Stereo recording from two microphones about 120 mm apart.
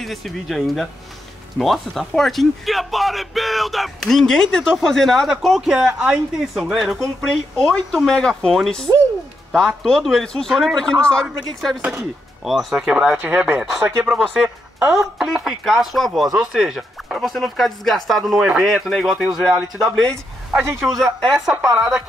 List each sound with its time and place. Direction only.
0.0 s a man's voice: centre (ahead or behind)
11.8 s speech: 20° right (ahead or behind)
12.4 s a man's voice: centre (ahead or behind)